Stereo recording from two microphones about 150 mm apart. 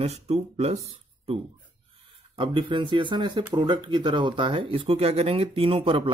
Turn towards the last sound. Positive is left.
turn(degrees=-35)  # may be behind; listen again after turning